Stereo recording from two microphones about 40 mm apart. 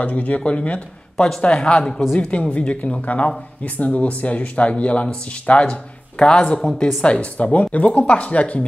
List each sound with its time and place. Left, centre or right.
0.0 s speech: left
1.1 s speech: centre
1.4 s speech: left
2.1 s speech: left